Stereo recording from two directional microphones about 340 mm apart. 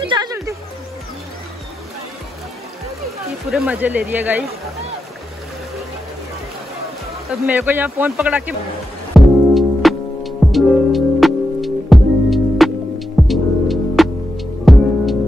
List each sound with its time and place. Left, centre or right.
0.0 s music: centre
3.4 s speech: centre
7.2 s speech: centre
9.1 s music: centre